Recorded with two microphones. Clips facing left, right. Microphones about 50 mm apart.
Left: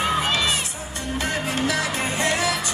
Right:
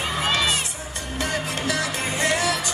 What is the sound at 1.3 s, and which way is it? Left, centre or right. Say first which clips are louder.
Music: left 2 dB; left.